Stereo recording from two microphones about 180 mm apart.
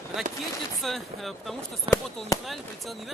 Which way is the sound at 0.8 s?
Centre (ahead or behind).